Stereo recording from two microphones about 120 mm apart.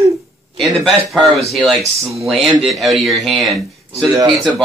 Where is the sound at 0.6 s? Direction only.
Centre (ahead or behind).